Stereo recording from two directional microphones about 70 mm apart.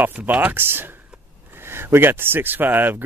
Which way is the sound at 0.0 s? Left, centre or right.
Right.